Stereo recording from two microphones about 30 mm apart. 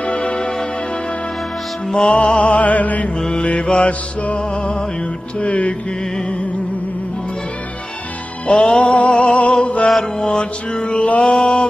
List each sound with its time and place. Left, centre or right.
0.0 s music: left
2.0 s music: left
3.6 s mantra: left
5.4 s mantra: left
8.5 s music: left
10.2 s mantra: left